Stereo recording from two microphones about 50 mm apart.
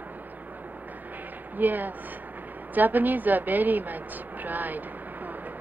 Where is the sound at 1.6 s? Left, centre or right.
Right.